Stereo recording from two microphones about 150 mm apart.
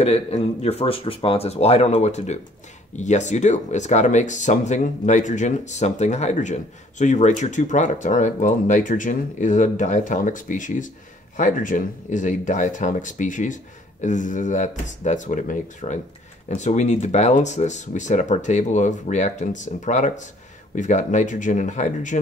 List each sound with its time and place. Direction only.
0.0 s speech: 45° left (ahead or behind)